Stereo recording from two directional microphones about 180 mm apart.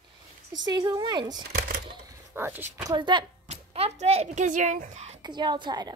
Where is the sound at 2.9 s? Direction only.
25° right (ahead or behind).